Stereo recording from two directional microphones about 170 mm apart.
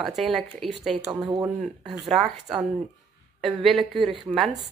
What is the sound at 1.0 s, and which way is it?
Speech, 20° right (ahead or behind).